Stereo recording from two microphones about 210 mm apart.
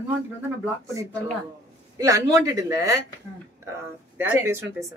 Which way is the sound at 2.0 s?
15° right (ahead or behind).